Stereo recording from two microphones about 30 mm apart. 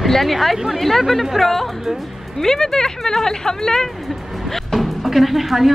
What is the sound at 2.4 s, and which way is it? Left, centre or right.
Speech, centre.